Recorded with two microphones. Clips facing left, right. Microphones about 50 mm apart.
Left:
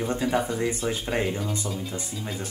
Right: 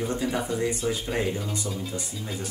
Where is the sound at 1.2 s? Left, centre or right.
Centre.